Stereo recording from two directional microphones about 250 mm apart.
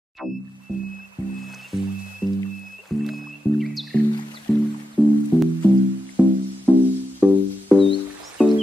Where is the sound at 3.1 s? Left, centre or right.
Centre.